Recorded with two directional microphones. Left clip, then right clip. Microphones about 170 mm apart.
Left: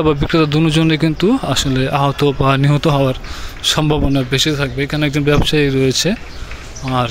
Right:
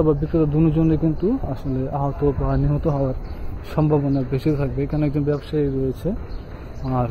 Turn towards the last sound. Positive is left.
turn(degrees=10)  # may be behind; listen again after turning